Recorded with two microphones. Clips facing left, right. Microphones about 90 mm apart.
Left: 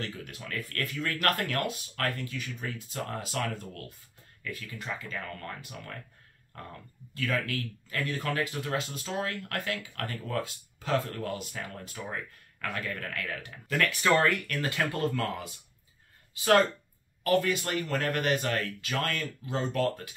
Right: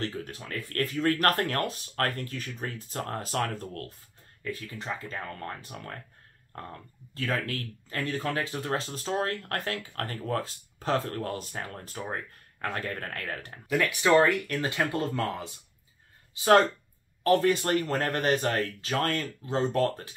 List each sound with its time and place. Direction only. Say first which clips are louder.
0.0 s speech: right 4 dB; 35° right (ahead or behind)
4.5 s speech: right 3 dB; 30° right (ahead or behind)
13.7 s speech: right 2 dB; 15° right (ahead or behind)
17.2 s speech: right 3 dB; 35° right (ahead or behind)